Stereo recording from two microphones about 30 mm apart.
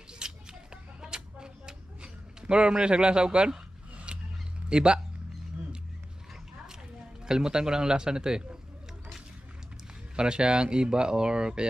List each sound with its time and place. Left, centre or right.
0.2 s a sound: right
2.4 s a man's voice: right
3.9 s a sound: right
4.6 s a man's voice: right
7.2 s speech: right
10.1 s speech: right